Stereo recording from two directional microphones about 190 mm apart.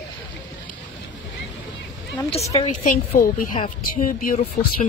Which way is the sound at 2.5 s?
40° left (ahead or behind).